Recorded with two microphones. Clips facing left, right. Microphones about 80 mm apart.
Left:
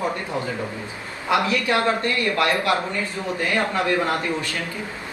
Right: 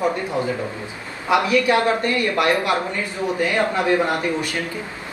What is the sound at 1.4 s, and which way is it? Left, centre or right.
Speech, right.